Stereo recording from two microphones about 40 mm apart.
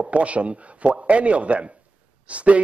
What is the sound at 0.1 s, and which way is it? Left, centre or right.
Speech, right.